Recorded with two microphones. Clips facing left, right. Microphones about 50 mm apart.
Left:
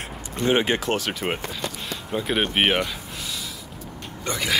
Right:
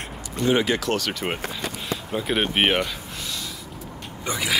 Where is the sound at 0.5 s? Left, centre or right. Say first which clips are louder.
Even; left.